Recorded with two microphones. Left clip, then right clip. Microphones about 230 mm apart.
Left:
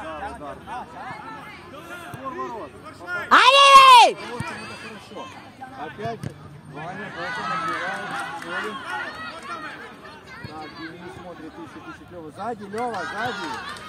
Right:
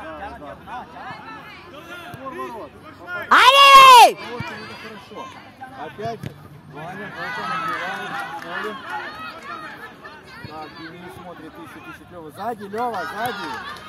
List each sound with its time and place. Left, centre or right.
0.7 s speech: right
3.3 s a sound: centre
4.4 s speech: right; by 9.3 s centre
12.4 s speech: right
12.7 s speech: right